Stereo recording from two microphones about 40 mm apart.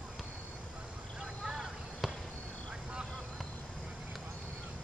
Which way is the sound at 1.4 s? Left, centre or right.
Centre.